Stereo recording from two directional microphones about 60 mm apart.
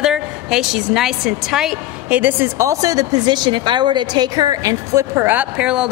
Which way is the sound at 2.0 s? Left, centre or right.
Right.